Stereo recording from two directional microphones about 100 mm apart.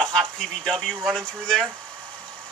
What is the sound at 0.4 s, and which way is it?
Speech, 5° left (ahead or behind).